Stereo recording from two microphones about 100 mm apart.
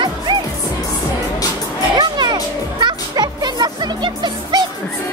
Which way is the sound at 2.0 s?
45° right (ahead or behind).